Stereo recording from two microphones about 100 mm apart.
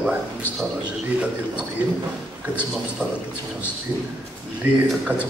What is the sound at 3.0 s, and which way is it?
Speech, 10° right (ahead or behind).